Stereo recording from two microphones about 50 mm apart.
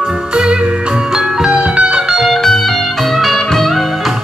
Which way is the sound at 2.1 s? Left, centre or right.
Centre.